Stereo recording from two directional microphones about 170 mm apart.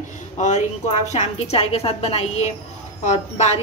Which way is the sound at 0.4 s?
45° left (ahead or behind).